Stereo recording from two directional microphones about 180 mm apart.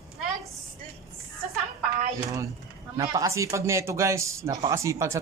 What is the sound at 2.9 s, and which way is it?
Speech, 20° right (ahead or behind).